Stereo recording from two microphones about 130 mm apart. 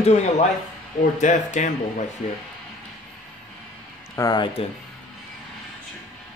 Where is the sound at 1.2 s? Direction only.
70° left (ahead or behind).